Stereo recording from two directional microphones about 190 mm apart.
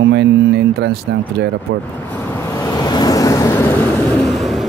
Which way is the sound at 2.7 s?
20° left (ahead or behind).